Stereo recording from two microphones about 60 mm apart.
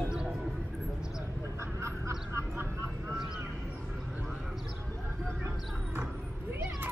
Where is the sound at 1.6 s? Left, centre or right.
Right.